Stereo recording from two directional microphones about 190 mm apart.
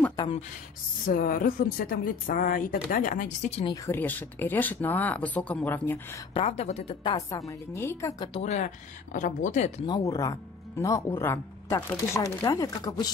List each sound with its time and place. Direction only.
1.0 s speech: 45° left (ahead or behind)
3.7 s speech: 15° left (ahead or behind)
6.3 s speech: 30° left (ahead or behind)
7.0 s speech: 20° left (ahead or behind)
8.3 s speech: 35° left (ahead or behind)
9.8 s speech: 20° left (ahead or behind)